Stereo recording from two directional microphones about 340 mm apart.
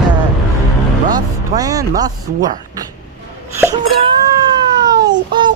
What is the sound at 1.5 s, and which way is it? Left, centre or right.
Speech, centre.